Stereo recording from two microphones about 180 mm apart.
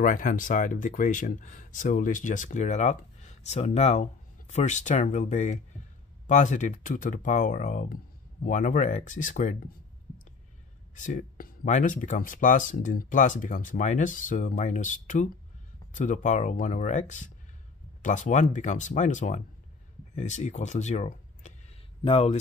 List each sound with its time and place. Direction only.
0.0 s speech: 45° left (ahead or behind)
11.0 s speech: 45° left (ahead or behind)